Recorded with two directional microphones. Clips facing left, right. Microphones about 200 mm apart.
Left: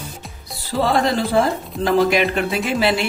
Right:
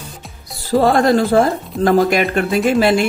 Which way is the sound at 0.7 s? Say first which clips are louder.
Right 6 dB; 50° right (ahead or behind).